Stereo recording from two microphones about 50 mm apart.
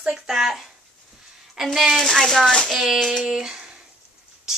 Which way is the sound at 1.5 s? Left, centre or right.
Centre.